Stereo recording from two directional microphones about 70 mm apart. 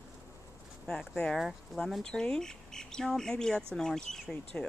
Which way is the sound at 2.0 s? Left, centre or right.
Centre.